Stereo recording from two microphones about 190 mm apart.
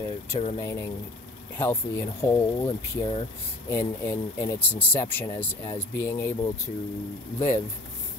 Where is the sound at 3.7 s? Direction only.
15° left (ahead or behind).